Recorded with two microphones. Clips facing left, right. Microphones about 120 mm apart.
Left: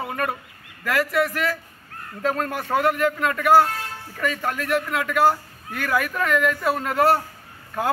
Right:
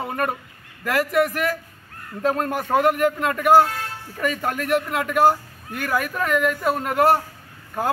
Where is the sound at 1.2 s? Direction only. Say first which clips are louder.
Right 2 dB; 15° right (ahead or behind).